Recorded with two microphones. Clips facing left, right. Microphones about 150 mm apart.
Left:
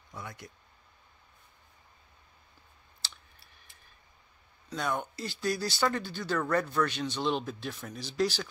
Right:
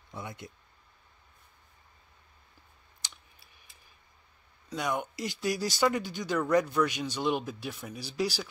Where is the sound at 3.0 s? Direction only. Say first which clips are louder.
Left 1 dB; 15° right (ahead or behind).